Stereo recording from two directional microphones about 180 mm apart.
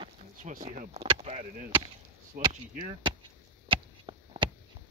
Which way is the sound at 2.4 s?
50° right (ahead or behind).